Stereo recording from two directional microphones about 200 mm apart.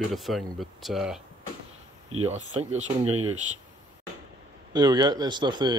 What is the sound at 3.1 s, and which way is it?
Speech, 90° right.